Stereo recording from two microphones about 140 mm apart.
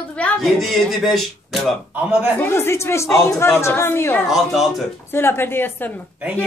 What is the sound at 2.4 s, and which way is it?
A child's voice, 15° left (ahead or behind).